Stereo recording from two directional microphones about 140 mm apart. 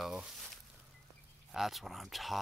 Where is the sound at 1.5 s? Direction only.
Centre (ahead or behind).